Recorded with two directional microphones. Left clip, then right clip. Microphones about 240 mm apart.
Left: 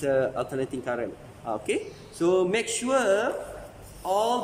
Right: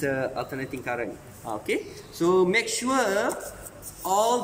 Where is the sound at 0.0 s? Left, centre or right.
Centre.